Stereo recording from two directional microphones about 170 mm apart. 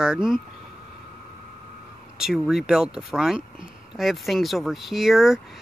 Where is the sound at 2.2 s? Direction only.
5° right (ahead or behind).